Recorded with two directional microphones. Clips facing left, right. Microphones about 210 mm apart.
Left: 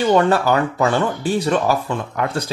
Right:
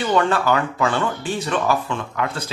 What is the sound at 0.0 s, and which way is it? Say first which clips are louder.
Speech: left 4 dB; 35° left (ahead or behind).